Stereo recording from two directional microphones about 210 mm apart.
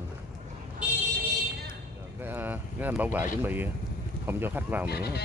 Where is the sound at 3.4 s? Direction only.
10° right (ahead or behind).